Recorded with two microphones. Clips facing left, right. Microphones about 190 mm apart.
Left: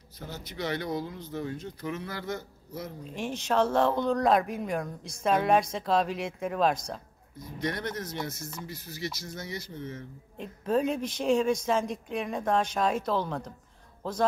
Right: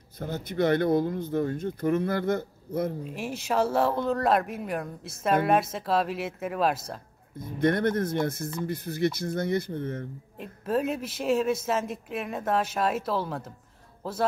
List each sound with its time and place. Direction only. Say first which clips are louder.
0.2 s speech: right 9 dB; 55° right (ahead or behind)
3.0 s speech: right 1 dB; 5° right (ahead or behind)
7.3 s speech: right 9 dB; 55° right (ahead or behind)
10.3 s speech: left 1 dB; 5° right (ahead or behind)